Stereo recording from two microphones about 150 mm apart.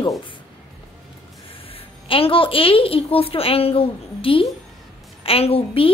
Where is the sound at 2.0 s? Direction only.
35° left (ahead or behind).